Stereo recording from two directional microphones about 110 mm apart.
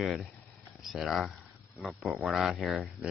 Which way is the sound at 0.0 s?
5° left (ahead or behind).